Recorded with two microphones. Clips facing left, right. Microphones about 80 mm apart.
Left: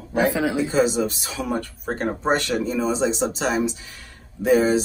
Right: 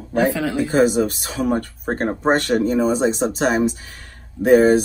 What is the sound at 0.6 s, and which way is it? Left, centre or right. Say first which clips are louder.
Speech: right 6 dB; right.